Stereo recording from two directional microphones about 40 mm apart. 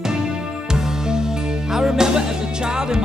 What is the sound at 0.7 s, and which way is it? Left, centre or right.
Music, centre.